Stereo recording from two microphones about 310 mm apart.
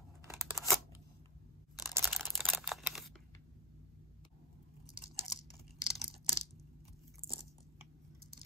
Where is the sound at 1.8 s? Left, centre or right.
Centre.